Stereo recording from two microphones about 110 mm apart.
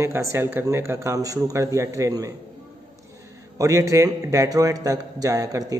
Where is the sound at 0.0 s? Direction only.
25° right (ahead or behind).